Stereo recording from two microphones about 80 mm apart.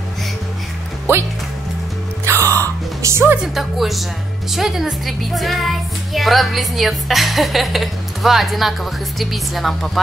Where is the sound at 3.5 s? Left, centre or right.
Centre.